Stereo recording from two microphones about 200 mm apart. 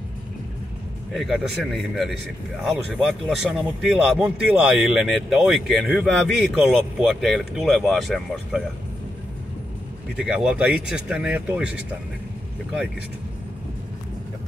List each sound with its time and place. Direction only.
1.1 s speech: centre (ahead or behind)
10.1 s speech: 5° right (ahead or behind)